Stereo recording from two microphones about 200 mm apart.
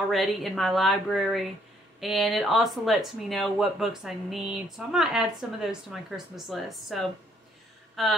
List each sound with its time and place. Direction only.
0.1 s speech: centre (ahead or behind)